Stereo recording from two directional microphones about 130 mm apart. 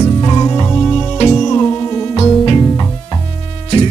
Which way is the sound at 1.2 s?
50° left (ahead or behind).